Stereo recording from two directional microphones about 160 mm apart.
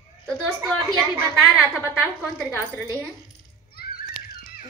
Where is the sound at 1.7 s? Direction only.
Centre (ahead or behind).